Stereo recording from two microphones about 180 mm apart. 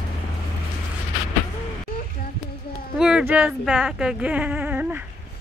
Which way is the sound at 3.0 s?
5° right (ahead or behind).